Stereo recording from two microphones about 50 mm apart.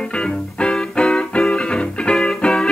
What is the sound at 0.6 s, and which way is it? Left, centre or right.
Music, centre.